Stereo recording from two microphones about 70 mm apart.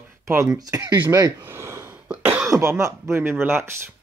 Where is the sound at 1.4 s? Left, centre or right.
Right.